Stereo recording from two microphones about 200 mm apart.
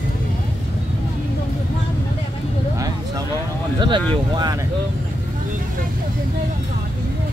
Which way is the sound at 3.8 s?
20° right (ahead or behind).